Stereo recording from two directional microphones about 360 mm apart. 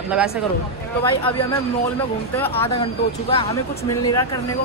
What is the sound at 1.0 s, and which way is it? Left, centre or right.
Speech, centre.